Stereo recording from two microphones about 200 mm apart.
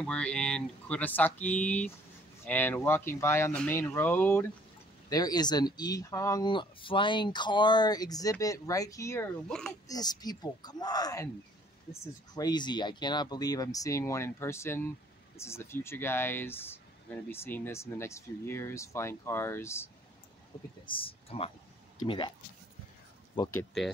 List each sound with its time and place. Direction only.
0.0 s speech: 5° left (ahead or behind)
9.8 s speech: 20° left (ahead or behind)
20.8 s speech: 25° left (ahead or behind)